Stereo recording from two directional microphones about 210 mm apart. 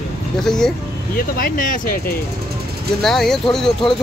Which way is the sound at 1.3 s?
40° left (ahead or behind).